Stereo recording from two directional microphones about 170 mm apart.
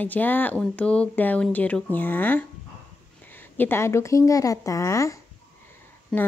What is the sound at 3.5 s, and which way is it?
A woman's voice, 10° left (ahead or behind).